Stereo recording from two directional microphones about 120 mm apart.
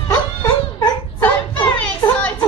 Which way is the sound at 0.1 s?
30° left (ahead or behind).